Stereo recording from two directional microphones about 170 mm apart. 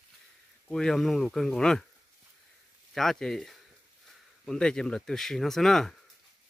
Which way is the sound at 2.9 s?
Centre (ahead or behind).